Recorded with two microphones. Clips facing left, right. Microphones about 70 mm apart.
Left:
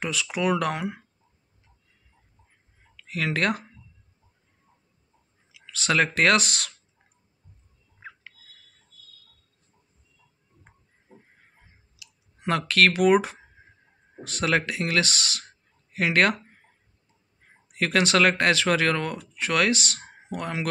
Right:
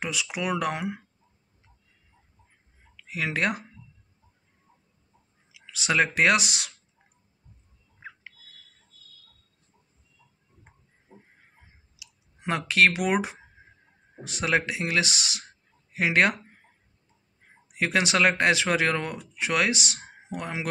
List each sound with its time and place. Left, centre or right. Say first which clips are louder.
0.0 s speech: left 4 dB; centre
3.0 s speech: left 2 dB; centre
5.5 s speech: left 2 dB; centre
12.0 s speech: left 4 dB; centre
17.7 s speech: left 2 dB; centre